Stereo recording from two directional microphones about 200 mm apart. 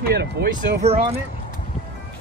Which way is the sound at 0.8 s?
30° right (ahead or behind).